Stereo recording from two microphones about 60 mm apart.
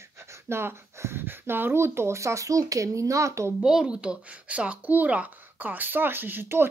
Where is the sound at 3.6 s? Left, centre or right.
Centre.